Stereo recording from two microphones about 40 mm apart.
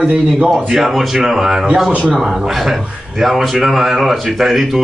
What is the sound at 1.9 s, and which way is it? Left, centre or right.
Speech, right.